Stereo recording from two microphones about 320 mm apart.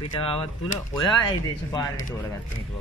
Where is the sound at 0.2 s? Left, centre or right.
Centre.